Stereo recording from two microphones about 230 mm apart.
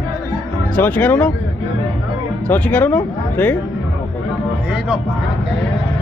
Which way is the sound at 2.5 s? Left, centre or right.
Centre.